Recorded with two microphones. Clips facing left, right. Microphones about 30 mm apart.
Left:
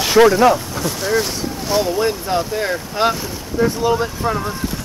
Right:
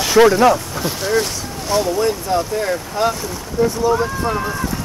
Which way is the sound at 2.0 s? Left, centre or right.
Left.